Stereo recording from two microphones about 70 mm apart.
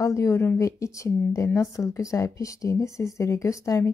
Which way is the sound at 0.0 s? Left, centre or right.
Left.